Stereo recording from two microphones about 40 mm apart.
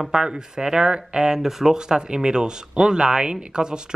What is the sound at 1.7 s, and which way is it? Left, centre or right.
Speech, centre.